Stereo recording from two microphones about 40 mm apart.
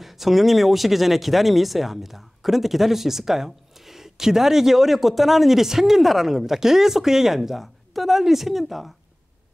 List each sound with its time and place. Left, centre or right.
0.0 s speech: centre